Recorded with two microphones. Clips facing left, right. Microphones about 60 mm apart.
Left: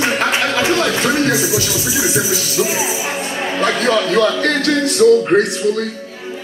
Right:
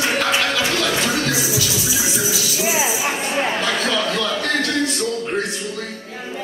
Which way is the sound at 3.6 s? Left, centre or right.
Left.